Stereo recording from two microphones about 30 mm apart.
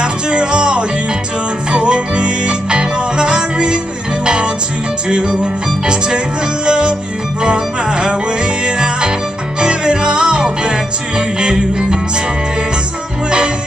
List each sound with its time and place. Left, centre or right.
0.0 s music: right